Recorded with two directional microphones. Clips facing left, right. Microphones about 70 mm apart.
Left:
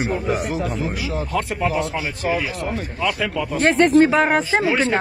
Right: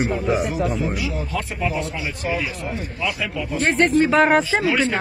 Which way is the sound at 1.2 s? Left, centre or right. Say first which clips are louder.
Left 3 dB; left.